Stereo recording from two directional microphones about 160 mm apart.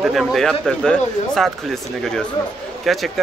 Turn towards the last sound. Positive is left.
turn(degrees=0)  # may be behind; listen again after turning